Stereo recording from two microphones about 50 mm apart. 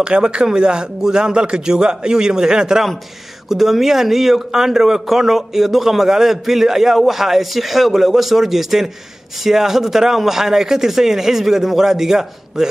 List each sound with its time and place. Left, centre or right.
0.0 s a man's voice: centre